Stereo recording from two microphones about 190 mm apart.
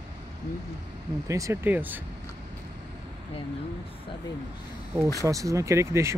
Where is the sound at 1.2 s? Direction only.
15° right (ahead or behind).